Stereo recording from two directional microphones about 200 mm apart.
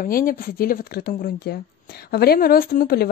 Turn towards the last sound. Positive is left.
turn(degrees=50)  # may be behind; listen again after turning